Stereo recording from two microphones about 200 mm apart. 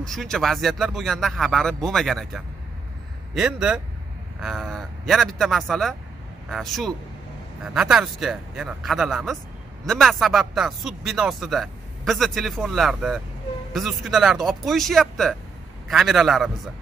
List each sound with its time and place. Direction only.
0.0 s speech: centre (ahead or behind)